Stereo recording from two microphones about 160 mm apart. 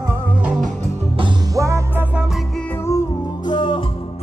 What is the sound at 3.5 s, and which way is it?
Music, 30° left (ahead or behind).